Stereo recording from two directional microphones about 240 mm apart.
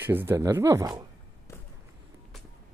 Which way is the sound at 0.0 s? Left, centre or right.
Centre.